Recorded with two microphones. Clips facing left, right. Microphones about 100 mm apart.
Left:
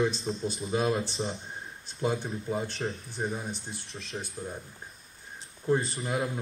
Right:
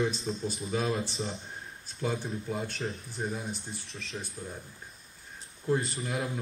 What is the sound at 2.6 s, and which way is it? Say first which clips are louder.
Speech: left 2 dB; 30° left (ahead or behind).